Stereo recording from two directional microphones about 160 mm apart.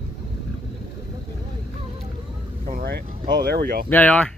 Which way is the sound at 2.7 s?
75° right (ahead or behind).